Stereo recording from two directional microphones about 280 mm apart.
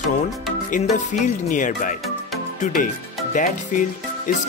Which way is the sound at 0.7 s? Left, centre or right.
Left.